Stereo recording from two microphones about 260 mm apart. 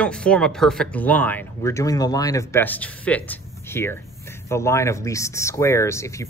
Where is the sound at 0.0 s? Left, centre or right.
Centre.